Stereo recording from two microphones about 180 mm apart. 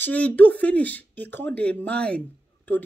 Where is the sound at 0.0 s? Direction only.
10° left (ahead or behind).